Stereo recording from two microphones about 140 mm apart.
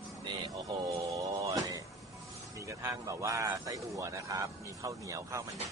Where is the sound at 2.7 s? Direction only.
20° right (ahead or behind).